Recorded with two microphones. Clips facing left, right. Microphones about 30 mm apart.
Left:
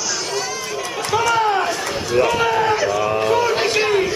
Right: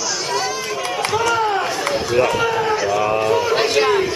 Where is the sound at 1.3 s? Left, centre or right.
Centre.